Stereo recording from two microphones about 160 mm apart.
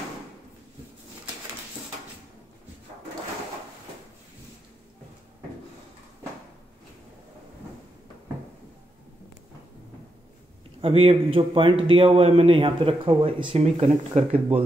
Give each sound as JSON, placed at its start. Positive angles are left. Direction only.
{"t": 10.8, "sound": "a man's voice", "side_deg": -35}